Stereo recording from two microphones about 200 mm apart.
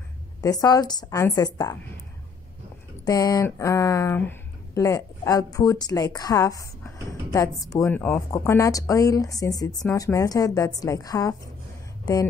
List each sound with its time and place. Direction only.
0.4 s speech: 15° left (ahead or behind)
3.1 s speech: 15° left (ahead or behind)